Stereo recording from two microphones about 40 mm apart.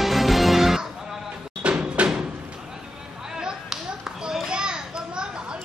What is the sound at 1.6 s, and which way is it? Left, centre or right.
Music, right.